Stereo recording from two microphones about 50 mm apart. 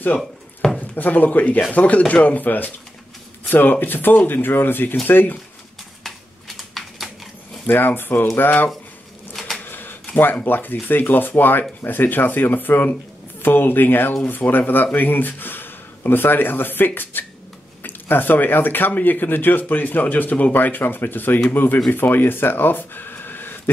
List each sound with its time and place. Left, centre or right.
0.7 s speech: left
6.0 s typing: centre
7.6 s speech: left
9.3 s a sound: centre
9.7 s a sound: left
10.1 s speech: left